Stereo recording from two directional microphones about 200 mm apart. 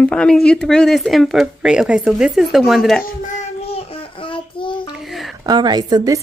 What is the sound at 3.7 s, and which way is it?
Child singing, 30° left (ahead or behind).